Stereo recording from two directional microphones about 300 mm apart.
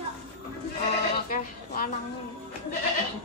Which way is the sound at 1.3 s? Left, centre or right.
Left.